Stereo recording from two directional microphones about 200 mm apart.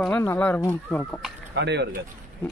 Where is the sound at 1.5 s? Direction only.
60° right (ahead or behind).